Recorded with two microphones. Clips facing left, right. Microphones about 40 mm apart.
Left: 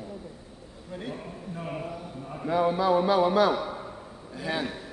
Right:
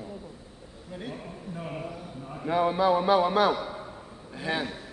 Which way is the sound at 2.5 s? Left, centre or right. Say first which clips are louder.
Even; right.